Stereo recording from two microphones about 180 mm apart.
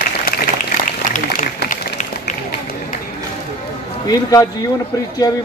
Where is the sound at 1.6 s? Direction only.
55° left (ahead or behind).